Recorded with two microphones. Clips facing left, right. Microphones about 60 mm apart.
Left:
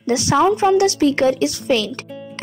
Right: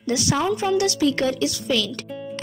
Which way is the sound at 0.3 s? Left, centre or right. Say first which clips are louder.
Left 8 dB; left.